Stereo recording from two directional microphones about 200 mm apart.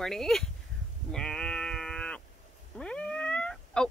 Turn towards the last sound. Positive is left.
turn(degrees=5)  # may be behind; listen again after turning